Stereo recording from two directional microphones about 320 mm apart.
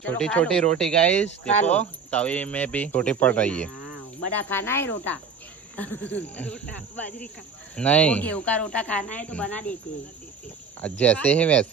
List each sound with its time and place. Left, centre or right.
0.0 s speech: centre
10.8 s speech: centre